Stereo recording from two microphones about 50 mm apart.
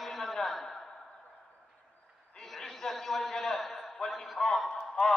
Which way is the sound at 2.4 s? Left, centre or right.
Centre.